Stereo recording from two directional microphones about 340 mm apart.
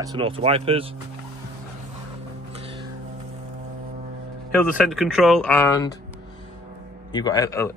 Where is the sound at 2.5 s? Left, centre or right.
Centre.